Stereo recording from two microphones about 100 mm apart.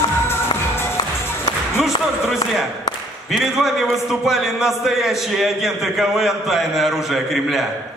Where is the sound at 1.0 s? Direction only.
45° left (ahead or behind).